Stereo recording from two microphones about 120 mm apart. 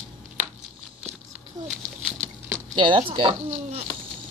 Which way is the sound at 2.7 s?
40° right (ahead or behind).